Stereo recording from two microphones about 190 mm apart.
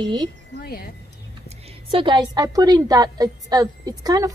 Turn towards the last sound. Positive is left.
turn(degrees=-20)  # may be behind; listen again after turning